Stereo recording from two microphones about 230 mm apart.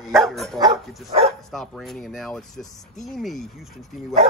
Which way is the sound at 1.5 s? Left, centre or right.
Centre.